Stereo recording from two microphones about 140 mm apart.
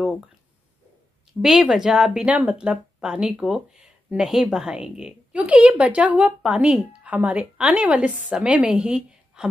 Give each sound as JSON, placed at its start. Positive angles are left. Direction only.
{"t": 1.4, "sound": "speech", "side_deg": -5}